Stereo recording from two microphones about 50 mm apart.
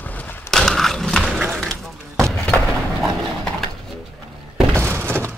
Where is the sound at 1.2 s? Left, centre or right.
Centre.